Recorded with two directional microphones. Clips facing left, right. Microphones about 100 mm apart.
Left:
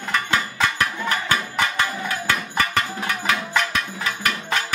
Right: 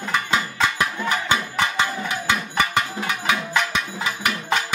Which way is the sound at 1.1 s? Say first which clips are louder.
Right 1 dB; 20° right (ahead or behind).